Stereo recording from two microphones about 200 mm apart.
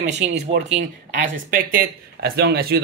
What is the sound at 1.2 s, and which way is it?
Speech, 45° right (ahead or behind).